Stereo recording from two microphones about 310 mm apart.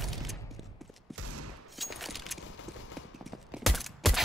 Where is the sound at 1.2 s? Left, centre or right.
Right.